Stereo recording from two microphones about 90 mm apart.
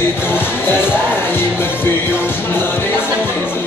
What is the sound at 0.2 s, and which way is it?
Music, 25° left (ahead or behind).